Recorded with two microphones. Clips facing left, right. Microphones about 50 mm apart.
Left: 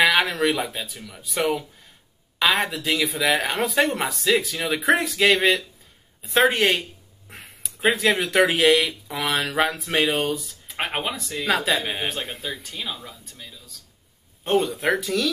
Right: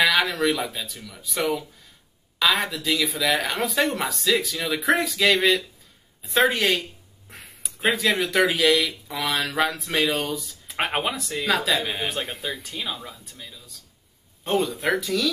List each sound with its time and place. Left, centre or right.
0.0 s a sound: centre
0.7 s speech: centre
3.3 s speech: centre
6.5 s a sound: centre
7.8 s speech: centre
10.8 s speech: centre
11.4 s speech: centre
14.4 s speech: centre